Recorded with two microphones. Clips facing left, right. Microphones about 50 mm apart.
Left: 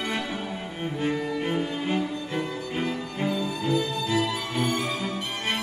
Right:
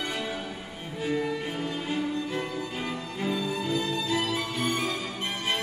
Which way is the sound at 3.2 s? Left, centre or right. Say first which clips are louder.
Left 2 dB; centre.